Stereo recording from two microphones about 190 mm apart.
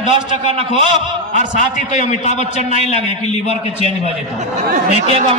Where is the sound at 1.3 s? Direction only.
40° left (ahead or behind).